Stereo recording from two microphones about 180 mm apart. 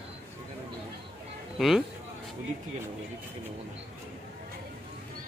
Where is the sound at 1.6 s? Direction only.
Centre (ahead or behind).